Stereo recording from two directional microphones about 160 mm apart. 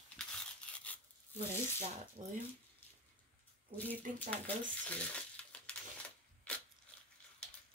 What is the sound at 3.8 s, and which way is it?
Speech, 10° left (ahead or behind).